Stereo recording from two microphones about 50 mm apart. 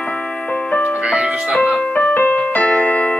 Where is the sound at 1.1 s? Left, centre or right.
Centre.